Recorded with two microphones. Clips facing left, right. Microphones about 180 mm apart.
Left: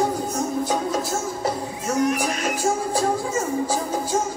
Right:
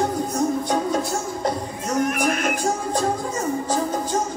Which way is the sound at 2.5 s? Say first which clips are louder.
Left 1 dB; 5° left (ahead or behind).